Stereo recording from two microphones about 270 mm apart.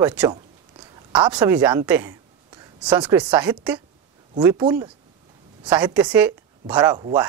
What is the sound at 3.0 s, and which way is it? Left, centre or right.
A woman's voice, centre.